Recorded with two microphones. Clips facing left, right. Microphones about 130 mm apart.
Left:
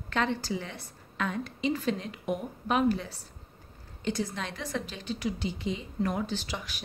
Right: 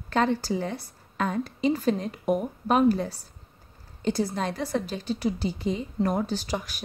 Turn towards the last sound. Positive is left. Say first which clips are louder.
# right 6 dB
turn(degrees=-45)  # may be behind; listen again after turning